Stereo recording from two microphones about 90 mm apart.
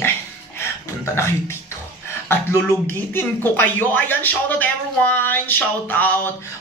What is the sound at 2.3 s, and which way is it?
Speech, 30° left (ahead or behind).